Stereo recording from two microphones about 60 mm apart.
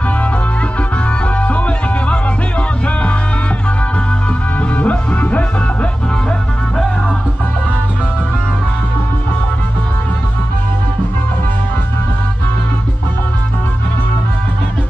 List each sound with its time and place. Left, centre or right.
1.2 s music: left
4.6 s music: left